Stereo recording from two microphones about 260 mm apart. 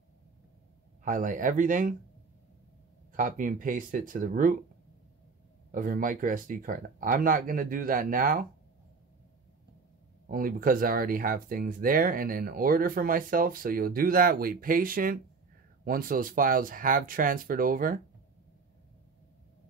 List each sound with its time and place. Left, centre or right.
1.0 s speech: right
3.1 s speech: right
5.7 s speech: right
10.2 s speech: right